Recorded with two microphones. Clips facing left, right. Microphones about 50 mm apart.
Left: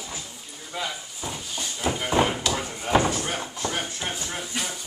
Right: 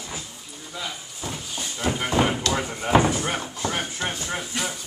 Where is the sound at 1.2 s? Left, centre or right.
Centre.